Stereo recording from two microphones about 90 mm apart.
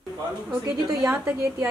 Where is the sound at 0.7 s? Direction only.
45° right (ahead or behind).